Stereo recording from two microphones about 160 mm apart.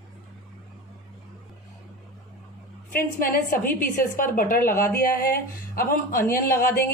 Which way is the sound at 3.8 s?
60° left (ahead or behind).